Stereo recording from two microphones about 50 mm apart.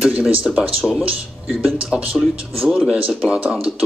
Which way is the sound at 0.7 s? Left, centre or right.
Centre.